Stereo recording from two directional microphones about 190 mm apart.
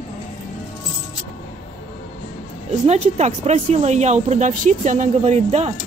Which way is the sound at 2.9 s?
35° right (ahead or behind).